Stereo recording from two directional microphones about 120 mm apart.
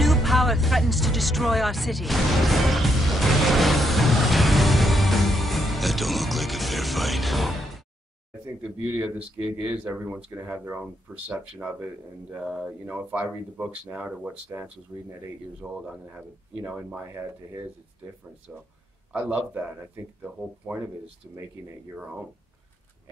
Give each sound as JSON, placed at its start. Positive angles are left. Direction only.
{"t": 0.0, "sound": "music", "side_deg": 0}
{"t": 8.8, "sound": "speech", "side_deg": -15}
{"t": 18.5, "sound": "speech", "side_deg": -5}